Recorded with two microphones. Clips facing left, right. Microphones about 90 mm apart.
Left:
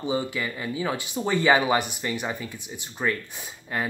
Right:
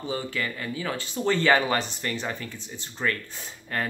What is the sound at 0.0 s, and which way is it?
Speech, 15° left (ahead or behind).